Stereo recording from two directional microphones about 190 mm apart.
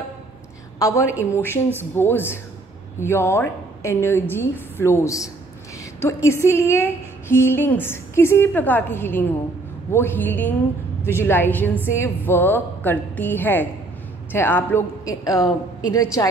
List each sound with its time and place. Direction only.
0.7 s a woman's voice: 15° left (ahead or behind)